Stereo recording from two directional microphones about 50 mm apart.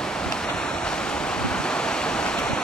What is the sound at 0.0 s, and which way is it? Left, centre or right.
Waves, centre.